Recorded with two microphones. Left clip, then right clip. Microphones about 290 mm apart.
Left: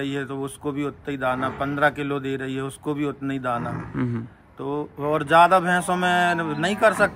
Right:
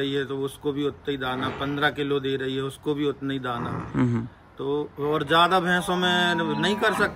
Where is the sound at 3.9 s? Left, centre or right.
Centre.